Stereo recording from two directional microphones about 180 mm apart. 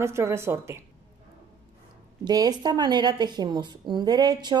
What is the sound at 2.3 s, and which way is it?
A woman's voice, 20° right (ahead or behind).